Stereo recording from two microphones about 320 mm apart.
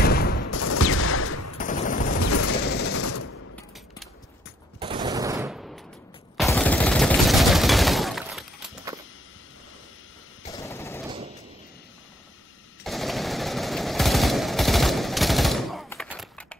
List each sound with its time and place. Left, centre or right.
0.0 s fusillade: left
0.5 s fusillade: left
1.6 s machine gun: left
2.9 s machine gun: left
4.7 s machine gun: centre
6.3 s fusillade: centre
10.5 s a sound: centre
12.8 s machine gun: centre